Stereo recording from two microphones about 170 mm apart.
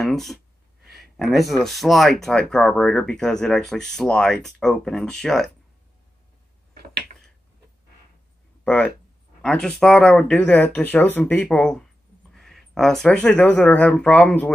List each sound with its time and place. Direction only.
0.0 s speech: centre (ahead or behind)
6.8 s a sound: 75° right (ahead or behind)
8.6 s speech: 5° left (ahead or behind)